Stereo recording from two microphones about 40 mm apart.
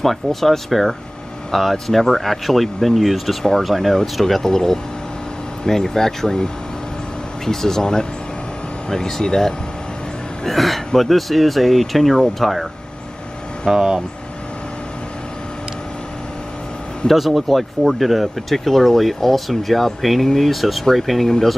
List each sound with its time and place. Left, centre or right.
0.0 s speech: centre
10.4 s speech: centre
13.7 s speech: centre
17.1 s speech: centre